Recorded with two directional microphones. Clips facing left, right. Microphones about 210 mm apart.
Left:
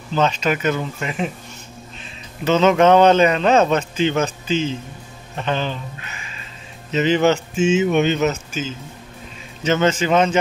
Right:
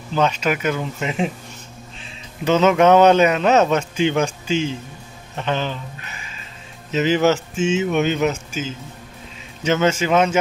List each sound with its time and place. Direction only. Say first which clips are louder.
0.1 s a man's voice: even; 10° right (ahead or behind)
1.0 s speech: right 4 dB; 25° right (ahead or behind)
2.4 s a man's voice: even; 10° right (ahead or behind)
6.9 s a man's voice: left 1 dB; 5° right (ahead or behind)
7.5 s speech: left 3 dB; 5° left (ahead or behind)
8.0 s a man's voice: left 1 dB; 10° right (ahead or behind)